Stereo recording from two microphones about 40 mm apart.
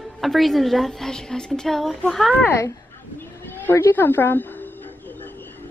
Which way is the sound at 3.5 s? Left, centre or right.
Left.